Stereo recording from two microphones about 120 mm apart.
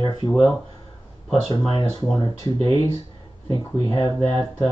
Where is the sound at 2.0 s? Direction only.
30° left (ahead or behind).